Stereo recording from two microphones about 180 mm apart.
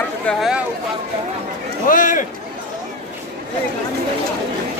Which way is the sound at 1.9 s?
45° left (ahead or behind).